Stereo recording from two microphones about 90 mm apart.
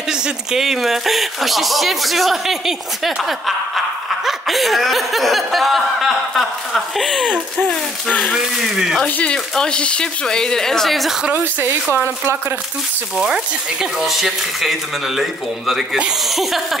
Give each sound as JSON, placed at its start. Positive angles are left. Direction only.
{"t": 0.1, "sound": "speech", "side_deg": -5}
{"t": 7.2, "sound": "a sound", "side_deg": -10}
{"t": 8.3, "sound": "speech", "side_deg": -5}
{"t": 9.0, "sound": "speech", "side_deg": 10}
{"t": 11.3, "sound": "speech", "side_deg": -25}
{"t": 13.2, "sound": "speech", "side_deg": -5}